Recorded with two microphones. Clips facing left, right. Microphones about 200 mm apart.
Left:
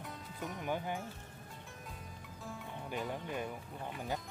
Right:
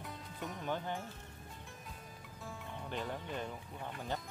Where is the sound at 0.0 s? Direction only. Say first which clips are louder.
Left 1 dB; centre (ahead or behind).